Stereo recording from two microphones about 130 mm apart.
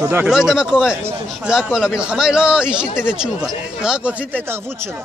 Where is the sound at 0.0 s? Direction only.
20° right (ahead or behind).